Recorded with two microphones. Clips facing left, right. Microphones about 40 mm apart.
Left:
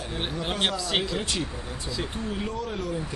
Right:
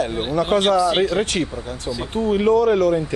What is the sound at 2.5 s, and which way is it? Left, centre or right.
Speech, right.